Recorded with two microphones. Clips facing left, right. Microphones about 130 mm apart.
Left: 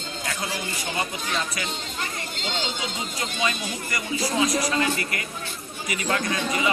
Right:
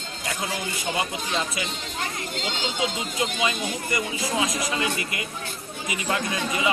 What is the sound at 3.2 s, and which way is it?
Speech, 20° right (ahead or behind).